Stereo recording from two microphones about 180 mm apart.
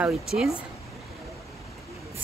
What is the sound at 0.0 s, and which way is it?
Speech, centre (ahead or behind).